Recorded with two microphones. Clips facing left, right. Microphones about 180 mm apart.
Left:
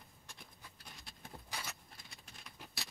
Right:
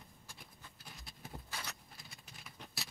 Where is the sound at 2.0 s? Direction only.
Centre (ahead or behind).